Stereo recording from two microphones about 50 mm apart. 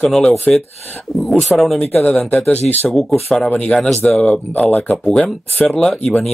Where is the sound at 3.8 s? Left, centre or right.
Centre.